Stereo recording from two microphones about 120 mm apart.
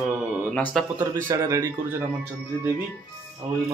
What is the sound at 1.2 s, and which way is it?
Speech, 30° right (ahead or behind).